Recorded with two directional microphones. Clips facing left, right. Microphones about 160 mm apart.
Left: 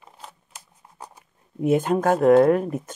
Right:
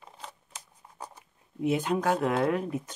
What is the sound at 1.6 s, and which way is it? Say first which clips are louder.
Speech: left 7 dB; 50° left (ahead or behind).